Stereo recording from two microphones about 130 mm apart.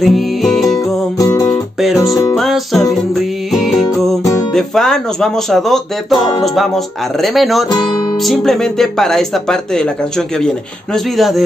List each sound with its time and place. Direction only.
0.0 s music: centre (ahead or behind)
1.1 s music: 25° left (ahead or behind)
1.5 s music: centre (ahead or behind)
2.0 s music: 25° left (ahead or behind)
2.3 s speech: centre (ahead or behind)
3.2 s music: centre (ahead or behind)
4.6 s speech: 5° left (ahead or behind)
7.7 s music: 35° left (ahead or behind)
8.2 s speech: centre (ahead or behind)